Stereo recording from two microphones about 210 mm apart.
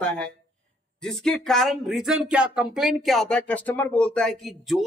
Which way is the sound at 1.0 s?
5° left (ahead or behind).